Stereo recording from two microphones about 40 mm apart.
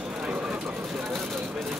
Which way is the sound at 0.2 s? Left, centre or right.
Right.